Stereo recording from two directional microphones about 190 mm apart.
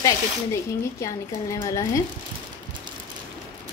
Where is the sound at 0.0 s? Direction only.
15° left (ahead or behind).